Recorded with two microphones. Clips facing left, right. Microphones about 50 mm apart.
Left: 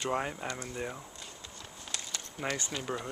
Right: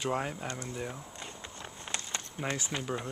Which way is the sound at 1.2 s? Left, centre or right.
Right.